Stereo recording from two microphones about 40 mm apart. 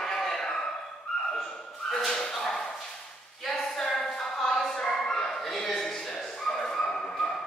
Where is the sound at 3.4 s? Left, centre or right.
Centre.